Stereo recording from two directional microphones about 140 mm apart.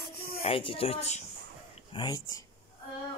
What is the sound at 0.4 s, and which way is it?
Music, 40° left (ahead or behind).